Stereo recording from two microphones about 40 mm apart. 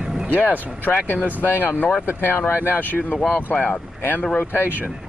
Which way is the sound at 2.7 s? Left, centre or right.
Left.